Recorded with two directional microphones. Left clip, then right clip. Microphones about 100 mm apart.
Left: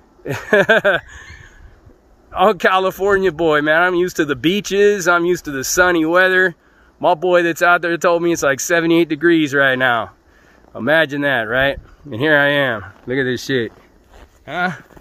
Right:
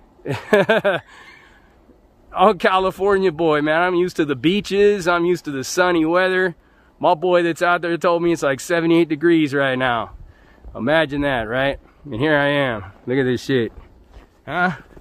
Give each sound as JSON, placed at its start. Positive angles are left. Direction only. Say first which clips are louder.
{"t": 0.2, "sound": "speech", "louder": "left 2 dB", "side_deg": -25}
{"t": 13.0, "sound": "speech", "louder": "right 1 dB", "side_deg": -65}
{"t": 14.4, "sound": "speech", "louder": "even", "side_deg": -90}